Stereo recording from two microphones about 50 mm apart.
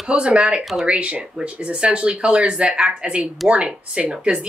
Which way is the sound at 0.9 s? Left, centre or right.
Right.